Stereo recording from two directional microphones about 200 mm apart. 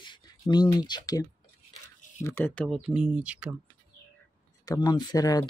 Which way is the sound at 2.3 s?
10° left (ahead or behind).